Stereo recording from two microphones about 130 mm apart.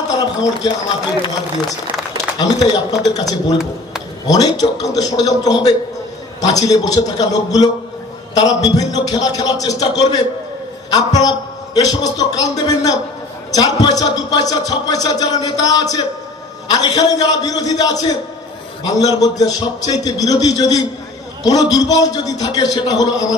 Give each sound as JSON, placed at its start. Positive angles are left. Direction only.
{"t": 2.3, "sound": "a man's voice", "side_deg": 30}